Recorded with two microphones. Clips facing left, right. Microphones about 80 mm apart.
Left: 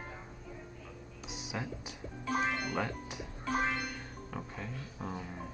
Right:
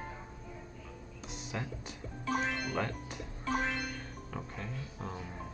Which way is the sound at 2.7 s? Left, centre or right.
Centre.